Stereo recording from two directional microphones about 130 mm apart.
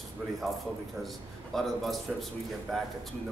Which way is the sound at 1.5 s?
Centre (ahead or behind).